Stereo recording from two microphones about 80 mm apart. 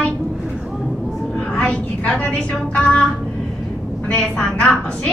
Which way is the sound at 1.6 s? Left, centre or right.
Centre.